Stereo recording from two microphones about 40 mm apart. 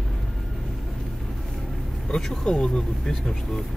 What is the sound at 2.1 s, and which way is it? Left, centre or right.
Speech, centre.